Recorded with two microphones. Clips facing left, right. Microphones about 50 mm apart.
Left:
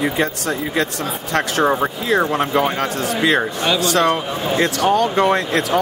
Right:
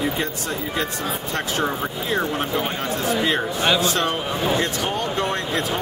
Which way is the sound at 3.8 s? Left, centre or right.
Left.